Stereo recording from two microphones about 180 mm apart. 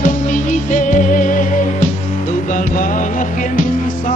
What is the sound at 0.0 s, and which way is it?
Music, 45° left (ahead or behind).